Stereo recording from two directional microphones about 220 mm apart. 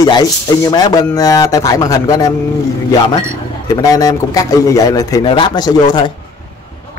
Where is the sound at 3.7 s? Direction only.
15° left (ahead or behind).